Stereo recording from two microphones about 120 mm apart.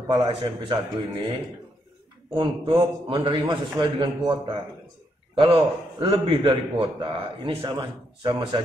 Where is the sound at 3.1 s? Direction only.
40° right (ahead or behind).